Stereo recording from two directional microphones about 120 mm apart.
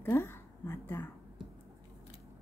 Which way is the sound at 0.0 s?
20° left (ahead or behind).